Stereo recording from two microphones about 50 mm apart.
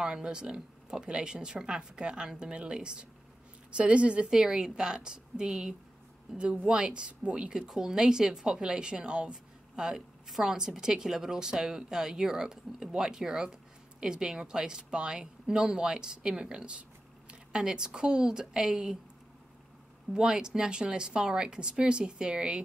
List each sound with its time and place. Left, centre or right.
0.0 s a woman's voice: centre
4.3 s a woman's voice: centre
20.1 s a woman's voice: centre